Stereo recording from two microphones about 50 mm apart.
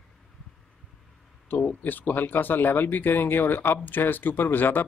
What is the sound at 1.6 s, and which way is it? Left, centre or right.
Speech, left.